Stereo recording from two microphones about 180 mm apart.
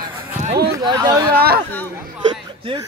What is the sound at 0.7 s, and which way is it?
Speech, 25° right (ahead or behind).